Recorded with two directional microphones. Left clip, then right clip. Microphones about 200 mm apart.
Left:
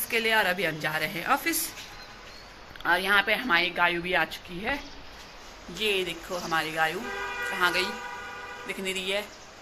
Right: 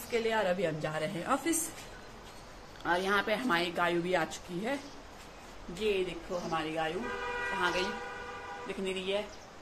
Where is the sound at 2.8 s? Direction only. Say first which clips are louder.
Left 7 dB; 5° right (ahead or behind).